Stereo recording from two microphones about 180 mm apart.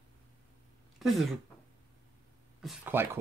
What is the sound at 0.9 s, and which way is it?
Speech, centre (ahead or behind).